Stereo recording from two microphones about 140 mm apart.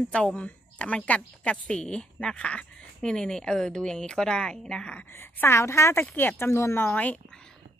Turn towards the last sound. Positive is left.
turn(degrees=15)  # may be behind; listen again after turning